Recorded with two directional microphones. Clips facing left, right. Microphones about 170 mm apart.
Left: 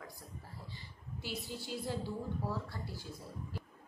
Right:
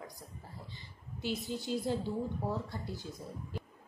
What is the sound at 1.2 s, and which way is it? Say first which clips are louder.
A woman's voice: right 6 dB; 20° right (ahead or behind).